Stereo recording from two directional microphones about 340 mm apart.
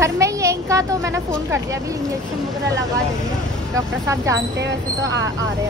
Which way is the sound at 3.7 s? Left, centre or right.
Centre.